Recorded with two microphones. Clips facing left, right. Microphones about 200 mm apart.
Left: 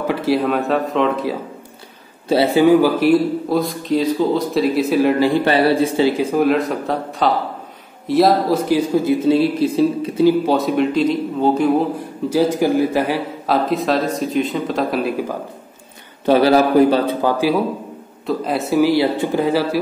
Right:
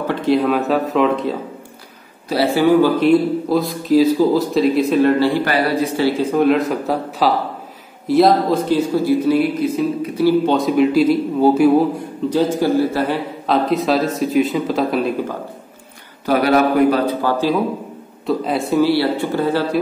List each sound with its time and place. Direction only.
0.0 s a man's voice: 5° left (ahead or behind)
2.2 s a man's voice: 20° left (ahead or behind)
3.0 s a man's voice: centre (ahead or behind)
5.4 s a man's voice: 25° left (ahead or behind)
6.3 s a man's voice: centre (ahead or behind); by 10.2 s 30° left (ahead or behind)
10.4 s a man's voice: centre (ahead or behind)
12.3 s a man's voice: 10° left (ahead or behind)
16.3 s a man's voice: 30° left (ahead or behind); by 17.6 s 15° left (ahead or behind)
18.2 s a man's voice: centre (ahead or behind)
18.8 s speech: 15° left (ahead or behind)